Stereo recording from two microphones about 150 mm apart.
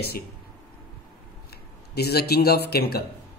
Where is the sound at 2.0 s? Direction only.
90° left.